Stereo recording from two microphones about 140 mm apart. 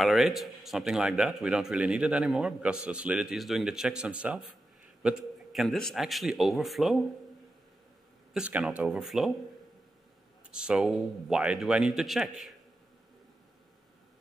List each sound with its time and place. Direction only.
0.0 s a man's voice: centre (ahead or behind)
8.3 s a man's voice: 5° right (ahead or behind)
10.5 s a man's voice: 5° right (ahead or behind)